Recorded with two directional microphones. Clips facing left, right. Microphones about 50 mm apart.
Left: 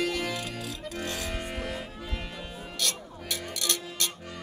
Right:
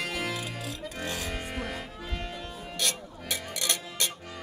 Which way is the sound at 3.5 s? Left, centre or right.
Right.